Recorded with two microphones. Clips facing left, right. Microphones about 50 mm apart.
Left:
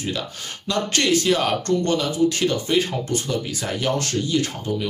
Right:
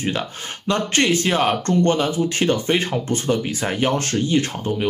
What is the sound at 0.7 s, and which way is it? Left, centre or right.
Speech, right.